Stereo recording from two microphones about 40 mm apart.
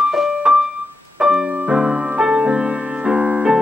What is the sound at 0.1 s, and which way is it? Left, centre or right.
Music, centre.